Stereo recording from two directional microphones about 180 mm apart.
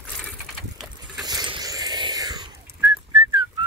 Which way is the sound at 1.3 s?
25° right (ahead or behind).